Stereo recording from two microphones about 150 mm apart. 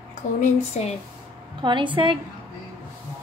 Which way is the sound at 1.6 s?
35° right (ahead or behind).